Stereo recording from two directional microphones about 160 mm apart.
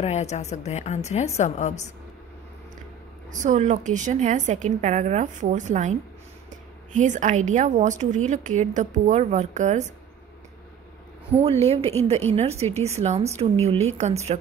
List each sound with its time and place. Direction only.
0.0 s a woman's voice: 45° left (ahead or behind)
3.3 s a woman's voice: 50° right (ahead or behind)
11.4 s a woman's voice: 40° right (ahead or behind)